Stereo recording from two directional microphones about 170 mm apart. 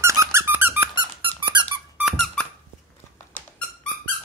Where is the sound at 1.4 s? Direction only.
25° right (ahead or behind).